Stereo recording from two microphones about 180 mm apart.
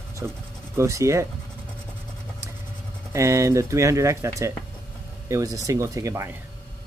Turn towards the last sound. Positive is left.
turn(degrees=-15)  # may be behind; listen again after turning